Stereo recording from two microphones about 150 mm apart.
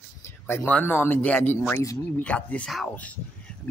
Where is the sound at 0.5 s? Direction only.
15° left (ahead or behind).